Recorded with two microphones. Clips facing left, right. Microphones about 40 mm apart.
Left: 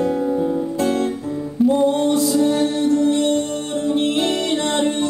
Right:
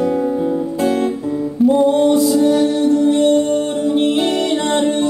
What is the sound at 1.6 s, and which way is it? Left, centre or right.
Music, centre.